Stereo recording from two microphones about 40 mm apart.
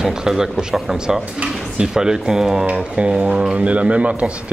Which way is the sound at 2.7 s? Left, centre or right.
Right.